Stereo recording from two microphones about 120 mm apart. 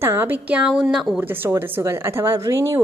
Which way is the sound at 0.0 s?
20° right (ahead or behind).